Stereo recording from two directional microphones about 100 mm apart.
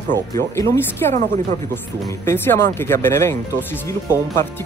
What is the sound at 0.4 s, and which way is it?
Speech, 25° left (ahead or behind).